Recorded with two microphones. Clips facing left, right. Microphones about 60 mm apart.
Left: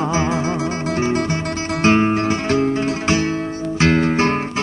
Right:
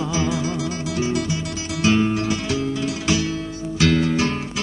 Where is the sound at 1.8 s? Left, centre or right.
Left.